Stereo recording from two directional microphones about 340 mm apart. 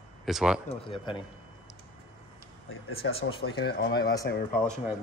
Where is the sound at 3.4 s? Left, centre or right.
Left.